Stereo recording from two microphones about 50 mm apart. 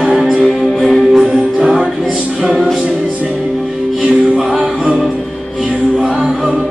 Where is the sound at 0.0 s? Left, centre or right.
Centre.